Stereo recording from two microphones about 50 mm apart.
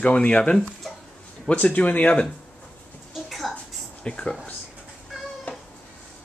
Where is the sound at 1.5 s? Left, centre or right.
Left.